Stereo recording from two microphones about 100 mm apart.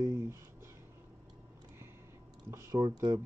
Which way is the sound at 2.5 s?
35° right (ahead or behind).